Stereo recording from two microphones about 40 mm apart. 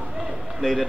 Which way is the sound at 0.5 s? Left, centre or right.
Centre.